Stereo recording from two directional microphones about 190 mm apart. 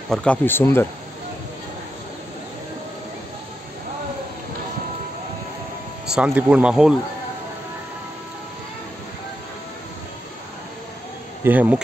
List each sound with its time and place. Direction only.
0.1 s speech: 5° left (ahead or behind)
6.1 s speech: 5° right (ahead or behind)
11.4 s speech: 10° right (ahead or behind)